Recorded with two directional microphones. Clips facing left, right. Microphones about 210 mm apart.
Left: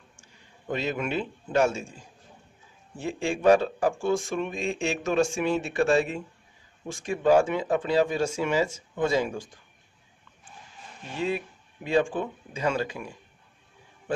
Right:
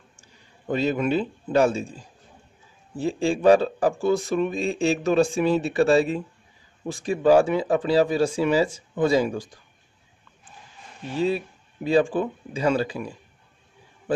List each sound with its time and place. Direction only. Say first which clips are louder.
0.7 s speech: right 6 dB; 35° right (ahead or behind)
3.0 s speech: right 5 dB; 35° right (ahead or behind)
11.1 s speech: right 5 dB; 35° right (ahead or behind)